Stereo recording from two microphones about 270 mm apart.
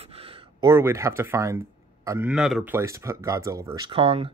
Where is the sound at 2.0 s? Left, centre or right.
Centre.